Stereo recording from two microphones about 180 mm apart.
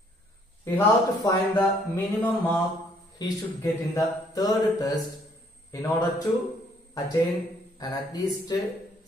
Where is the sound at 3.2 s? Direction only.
20° left (ahead or behind).